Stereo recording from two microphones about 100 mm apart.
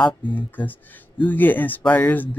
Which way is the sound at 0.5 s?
20° left (ahead or behind).